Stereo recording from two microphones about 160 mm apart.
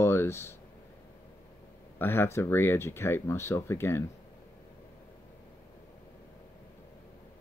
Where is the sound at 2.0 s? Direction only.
15° left (ahead or behind).